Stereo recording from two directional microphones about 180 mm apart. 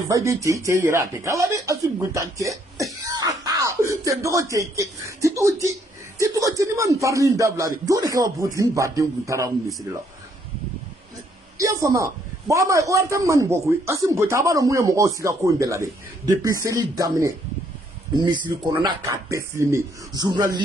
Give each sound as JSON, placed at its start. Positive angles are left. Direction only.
{"t": 0.1, "sound": "a man's voice", "side_deg": -15}
{"t": 11.5, "sound": "a man's voice", "side_deg": -20}